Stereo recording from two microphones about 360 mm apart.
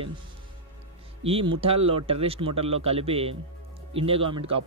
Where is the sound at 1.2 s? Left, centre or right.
Centre.